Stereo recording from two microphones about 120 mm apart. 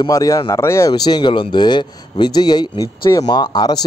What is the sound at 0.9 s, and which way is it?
Speech, 35° left (ahead or behind).